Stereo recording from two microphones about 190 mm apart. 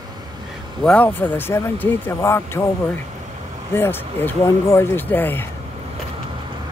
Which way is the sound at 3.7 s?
10° left (ahead or behind).